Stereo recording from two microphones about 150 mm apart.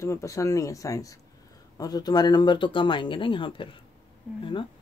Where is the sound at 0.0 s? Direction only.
20° left (ahead or behind).